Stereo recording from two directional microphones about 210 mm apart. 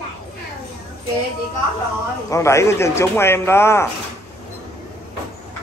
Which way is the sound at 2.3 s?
15° left (ahead or behind).